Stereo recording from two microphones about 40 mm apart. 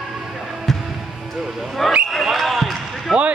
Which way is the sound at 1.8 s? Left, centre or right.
Centre.